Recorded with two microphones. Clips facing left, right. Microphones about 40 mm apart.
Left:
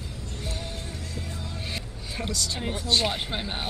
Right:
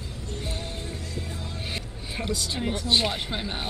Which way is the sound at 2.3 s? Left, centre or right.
Right.